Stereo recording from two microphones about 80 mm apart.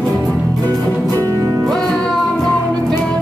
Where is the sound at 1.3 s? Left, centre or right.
Right.